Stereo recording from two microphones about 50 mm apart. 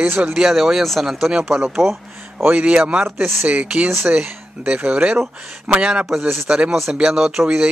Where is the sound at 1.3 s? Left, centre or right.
Centre.